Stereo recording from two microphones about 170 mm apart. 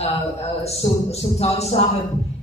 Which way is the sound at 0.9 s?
35° left (ahead or behind).